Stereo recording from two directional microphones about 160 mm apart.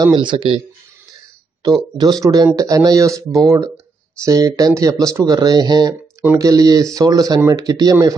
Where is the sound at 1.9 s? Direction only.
25° right (ahead or behind).